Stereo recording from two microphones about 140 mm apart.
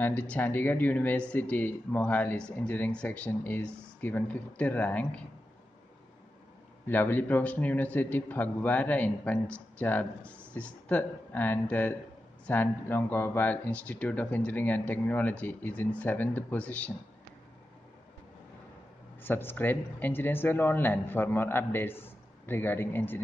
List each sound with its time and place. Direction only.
0.0 s speech: 10° left (ahead or behind)
6.9 s speech: 15° left (ahead or behind)
19.2 s speech: 15° left (ahead or behind)